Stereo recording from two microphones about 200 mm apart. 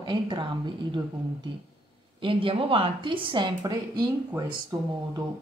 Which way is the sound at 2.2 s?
25° right (ahead or behind).